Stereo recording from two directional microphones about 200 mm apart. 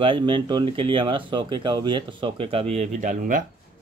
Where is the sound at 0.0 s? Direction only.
25° right (ahead or behind); by 3.4 s 40° right (ahead or behind).